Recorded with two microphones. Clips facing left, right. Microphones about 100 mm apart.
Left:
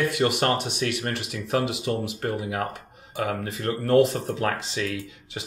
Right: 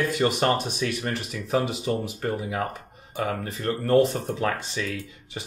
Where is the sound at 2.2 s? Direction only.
10° left (ahead or behind).